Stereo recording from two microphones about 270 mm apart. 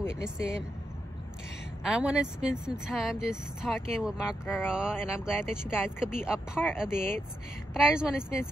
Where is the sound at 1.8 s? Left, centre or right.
Centre.